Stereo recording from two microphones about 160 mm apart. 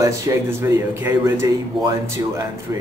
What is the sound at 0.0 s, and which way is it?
Speech, 20° right (ahead or behind).